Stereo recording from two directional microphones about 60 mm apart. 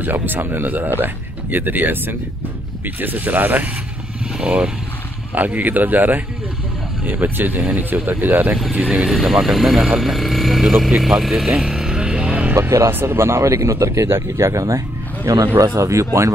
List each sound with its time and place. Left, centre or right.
0.0 s speech: right
4.4 s speech: centre
5.3 s speech: right
8.7 s speech: centre
9.1 s speech: centre
10.9 s vehicle: centre; by 12.5 s right
12.5 s speech: right